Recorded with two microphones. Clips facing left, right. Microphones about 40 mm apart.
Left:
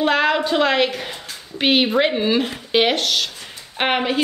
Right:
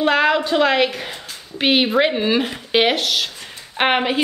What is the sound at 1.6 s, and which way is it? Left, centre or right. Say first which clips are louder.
A woman's voice: right 1 dB; centre.